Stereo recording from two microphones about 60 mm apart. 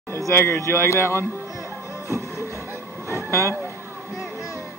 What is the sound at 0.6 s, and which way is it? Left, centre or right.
Speech, left.